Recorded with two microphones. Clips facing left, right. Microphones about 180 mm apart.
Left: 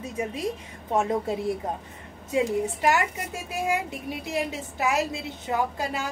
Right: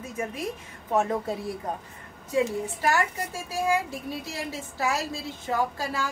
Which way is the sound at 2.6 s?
20° left (ahead or behind).